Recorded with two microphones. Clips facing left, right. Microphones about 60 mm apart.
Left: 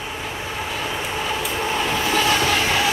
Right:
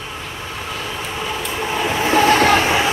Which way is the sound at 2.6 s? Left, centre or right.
Right.